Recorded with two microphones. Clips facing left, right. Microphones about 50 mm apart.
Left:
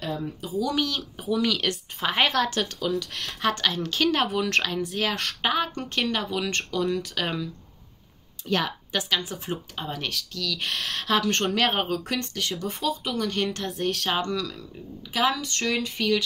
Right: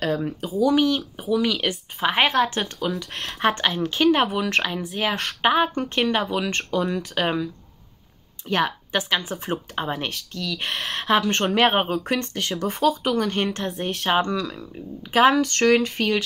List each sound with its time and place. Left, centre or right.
0.0 s speech: right
0.6 s speech: right
1.2 s speech: centre
5.4 s speech: right
8.5 s speech: right; by 11.5 s centre
11.5 s speech: right
12.5 s speech: right
13.2 s speech: right
15.1 s speech: right